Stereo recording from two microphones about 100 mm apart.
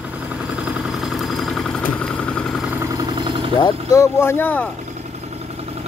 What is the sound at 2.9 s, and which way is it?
Vehicle, 40° right (ahead or behind).